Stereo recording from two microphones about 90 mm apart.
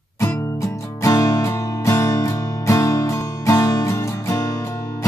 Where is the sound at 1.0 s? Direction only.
35° left (ahead or behind).